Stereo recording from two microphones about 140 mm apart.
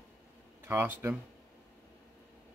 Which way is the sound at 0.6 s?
15° right (ahead or behind).